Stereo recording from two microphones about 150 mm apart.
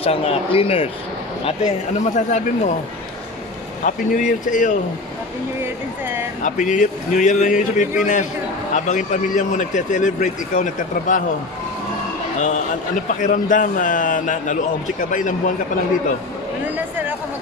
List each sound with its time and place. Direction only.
0.0 s speech: 40° left (ahead or behind)
2.0 s speech: 50° left (ahead or behind)
3.8 s speech: 60° left (ahead or behind)
5.6 s speech: 15° right (ahead or behind)
6.4 s speech: 55° left (ahead or behind)
12.4 s speech: 55° left (ahead or behind)